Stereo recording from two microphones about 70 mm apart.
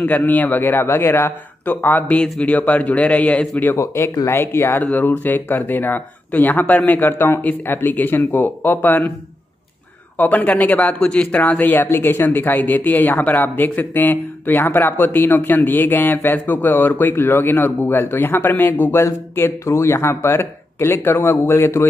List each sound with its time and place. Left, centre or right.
0.3 s speech: left
3.8 s speech: left
10.1 s speech: left